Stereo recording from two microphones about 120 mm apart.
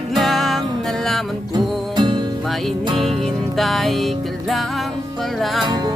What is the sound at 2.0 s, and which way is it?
Music, 45° right (ahead or behind).